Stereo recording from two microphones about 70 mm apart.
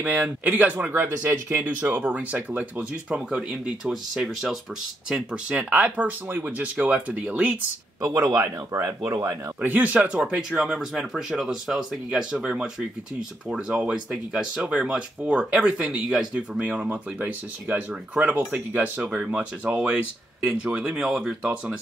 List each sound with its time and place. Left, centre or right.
0.0 s speech: right
8.0 s speech: right
9.6 s speech: right